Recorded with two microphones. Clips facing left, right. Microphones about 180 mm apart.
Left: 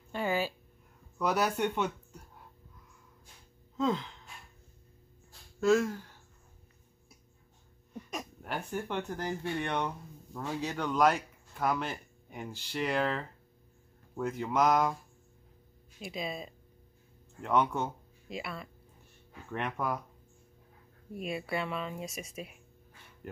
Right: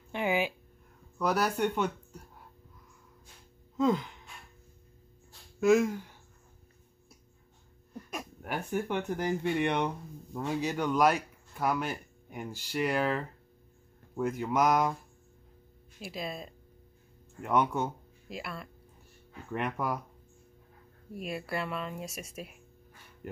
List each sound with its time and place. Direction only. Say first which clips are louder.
0.1 s a sound: right 2 dB; 15° right (ahead or behind)
1.1 s speech: right 1 dB; centre (ahead or behind)
3.7 s speech: right 3 dB; 5° right (ahead or behind)
5.6 s speech: right 2 dB; 15° right (ahead or behind)
7.9 s speech: even; centre (ahead or behind)
16.0 s speech: even; centre (ahead or behind)
17.4 s speech: right 1 dB; 10° right (ahead or behind)
17.8 s speech: right 2 dB; centre (ahead or behind)
21.1 s speech: left 1 dB; centre (ahead or behind)